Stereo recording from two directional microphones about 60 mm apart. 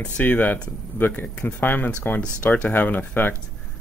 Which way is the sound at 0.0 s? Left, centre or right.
Left.